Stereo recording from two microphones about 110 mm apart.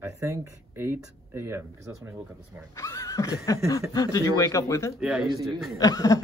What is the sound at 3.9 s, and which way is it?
A man's voice, 30° left (ahead or behind).